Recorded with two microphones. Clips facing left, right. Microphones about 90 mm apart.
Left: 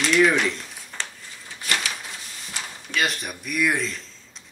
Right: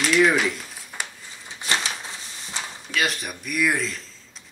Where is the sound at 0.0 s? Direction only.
5° right (ahead or behind).